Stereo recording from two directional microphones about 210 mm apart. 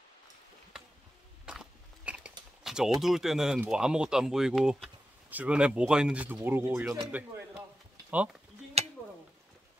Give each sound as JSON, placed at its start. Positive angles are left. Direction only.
{"t": 1.4, "sound": "biting", "side_deg": -5}
{"t": 2.6, "sound": "speech", "side_deg": 0}